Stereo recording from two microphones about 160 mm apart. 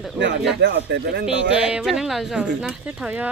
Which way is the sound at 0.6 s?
90° right.